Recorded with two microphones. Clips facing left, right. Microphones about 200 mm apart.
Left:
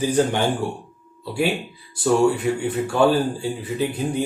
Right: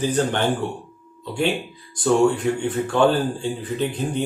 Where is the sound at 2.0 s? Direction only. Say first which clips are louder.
Even; 10° left (ahead or behind).